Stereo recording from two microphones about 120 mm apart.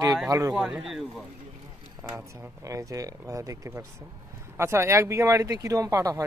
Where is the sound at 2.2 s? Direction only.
30° right (ahead or behind).